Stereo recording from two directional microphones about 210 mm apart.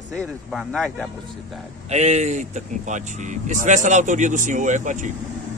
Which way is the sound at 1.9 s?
30° right (ahead or behind).